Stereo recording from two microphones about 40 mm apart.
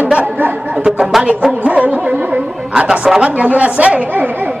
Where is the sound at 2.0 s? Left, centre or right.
Right.